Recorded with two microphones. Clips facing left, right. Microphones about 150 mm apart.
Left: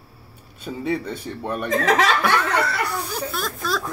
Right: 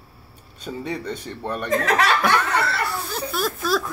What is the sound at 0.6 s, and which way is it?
Speech, 5° left (ahead or behind).